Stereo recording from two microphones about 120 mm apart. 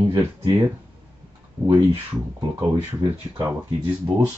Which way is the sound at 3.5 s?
20° right (ahead or behind).